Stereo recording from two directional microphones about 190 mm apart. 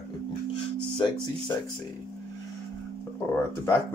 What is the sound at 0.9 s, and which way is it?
Speech, 25° left (ahead or behind).